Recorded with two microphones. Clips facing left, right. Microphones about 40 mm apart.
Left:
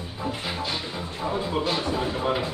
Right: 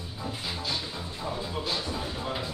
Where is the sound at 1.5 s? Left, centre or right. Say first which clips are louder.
Left 7 dB; left.